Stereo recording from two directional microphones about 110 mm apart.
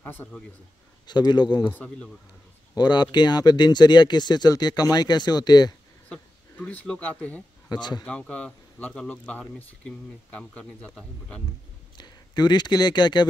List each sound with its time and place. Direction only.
0.0 s a man's voice: 20° left (ahead or behind)
1.0 s speech: 40° left (ahead or behind)
1.7 s speech: 15° left (ahead or behind)
2.7 s speech: 40° left (ahead or behind)
6.0 s speech: 10° left (ahead or behind)
12.0 s speech: 40° left (ahead or behind)